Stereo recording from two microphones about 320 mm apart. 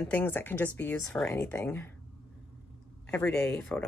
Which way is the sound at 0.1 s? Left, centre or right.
Centre.